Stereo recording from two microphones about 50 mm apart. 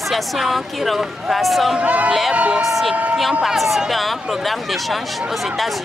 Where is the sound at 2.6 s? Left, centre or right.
Centre.